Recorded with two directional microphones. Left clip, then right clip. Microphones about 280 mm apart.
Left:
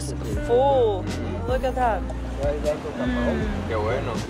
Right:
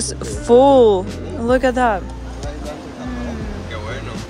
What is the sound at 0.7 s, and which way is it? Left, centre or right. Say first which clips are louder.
Speech: right 9 dB; right.